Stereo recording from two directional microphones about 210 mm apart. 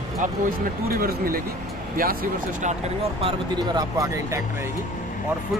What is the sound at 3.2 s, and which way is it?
Speech, 25° right (ahead or behind).